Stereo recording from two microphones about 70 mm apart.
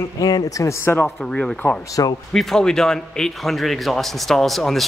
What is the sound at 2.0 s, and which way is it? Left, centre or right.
Speech, left.